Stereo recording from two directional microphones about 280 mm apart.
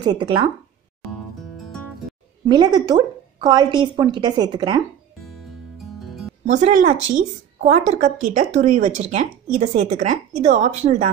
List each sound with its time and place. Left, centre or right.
0.0 s a woman's voice: centre
2.4 s a woman's voice: centre
5.9 s music: centre
6.5 s speech: right